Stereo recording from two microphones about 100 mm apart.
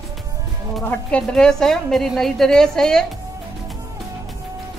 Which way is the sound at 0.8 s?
15° left (ahead or behind).